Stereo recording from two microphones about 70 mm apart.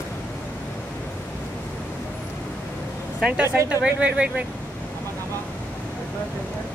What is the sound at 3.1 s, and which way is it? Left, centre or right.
Speech, centre.